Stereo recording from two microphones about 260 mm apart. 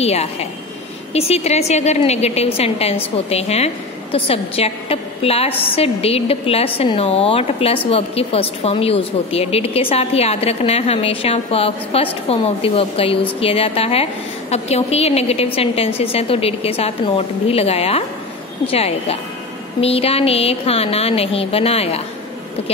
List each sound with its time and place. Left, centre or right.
0.0 s a woman's voice: left